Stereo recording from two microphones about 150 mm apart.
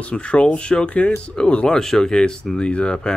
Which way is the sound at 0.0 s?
5° left (ahead or behind).